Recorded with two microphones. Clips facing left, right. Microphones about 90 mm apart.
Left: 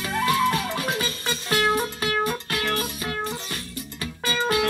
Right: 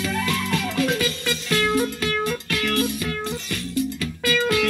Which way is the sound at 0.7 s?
30° left (ahead or behind).